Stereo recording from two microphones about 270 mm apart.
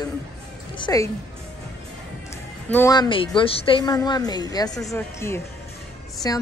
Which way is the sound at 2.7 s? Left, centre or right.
Centre.